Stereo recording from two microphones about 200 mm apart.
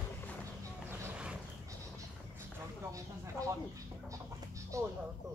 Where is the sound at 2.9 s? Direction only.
15° right (ahead or behind).